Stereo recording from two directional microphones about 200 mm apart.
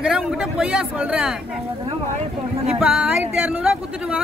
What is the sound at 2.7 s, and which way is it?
Speech, 5° right (ahead or behind).